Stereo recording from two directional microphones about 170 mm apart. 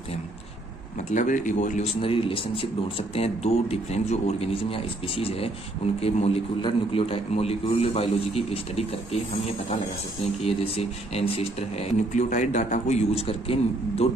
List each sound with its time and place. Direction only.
1.1 s speech: 50° left (ahead or behind)
2.0 s speech: 30° left (ahead or behind)
10.4 s speech: 35° left (ahead or behind)